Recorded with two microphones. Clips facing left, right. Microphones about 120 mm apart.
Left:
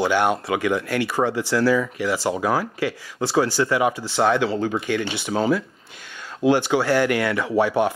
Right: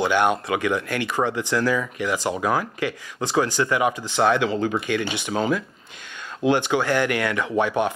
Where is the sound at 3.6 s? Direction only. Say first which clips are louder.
Left 1 dB; 30° left (ahead or behind).